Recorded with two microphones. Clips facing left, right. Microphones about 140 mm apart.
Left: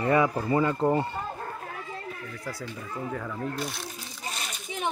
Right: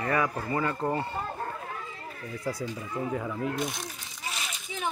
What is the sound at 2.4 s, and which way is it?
Speech, 20° right (ahead or behind).